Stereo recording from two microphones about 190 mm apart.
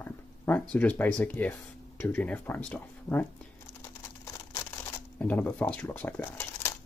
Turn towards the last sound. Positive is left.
turn(degrees=15)  # may be behind; listen again after turning